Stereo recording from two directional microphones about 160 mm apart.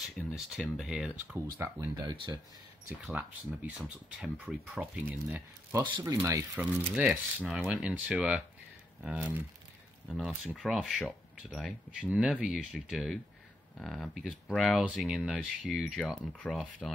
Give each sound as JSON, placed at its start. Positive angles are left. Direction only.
{"t": 0.3, "sound": "speech", "side_deg": -5}
{"t": 1.6, "sound": "speech", "side_deg": -20}
{"t": 2.1, "sound": "speech", "side_deg": -30}
{"t": 3.1, "sound": "speech", "side_deg": -10}
{"t": 7.0, "sound": "speech", "side_deg": -5}